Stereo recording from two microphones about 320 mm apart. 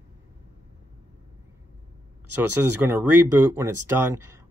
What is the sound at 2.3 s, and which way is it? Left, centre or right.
Speech, centre.